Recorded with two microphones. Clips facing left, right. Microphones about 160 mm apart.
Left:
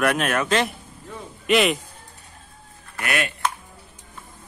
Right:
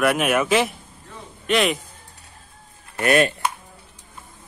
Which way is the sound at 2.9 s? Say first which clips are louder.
Right 9 dB; 35° right (ahead or behind).